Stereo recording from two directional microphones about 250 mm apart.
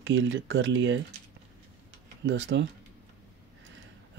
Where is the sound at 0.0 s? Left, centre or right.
Right.